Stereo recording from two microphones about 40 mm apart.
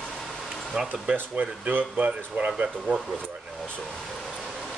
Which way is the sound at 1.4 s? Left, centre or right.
Right.